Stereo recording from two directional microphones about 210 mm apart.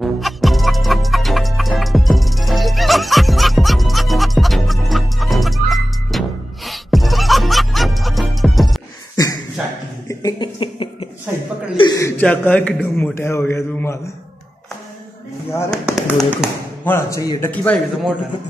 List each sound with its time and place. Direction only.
0.0 s music: centre (ahead or behind)
9.1 s a sound: 15° left (ahead or behind)
10.0 s cough: 20° left (ahead or behind)
11.7 s chuckle: 20° left (ahead or behind)
12.2 s a man's voice: 5° left (ahead or behind)
15.7 s speech: centre (ahead or behind)
16.8 s a man's voice: 15° left (ahead or behind)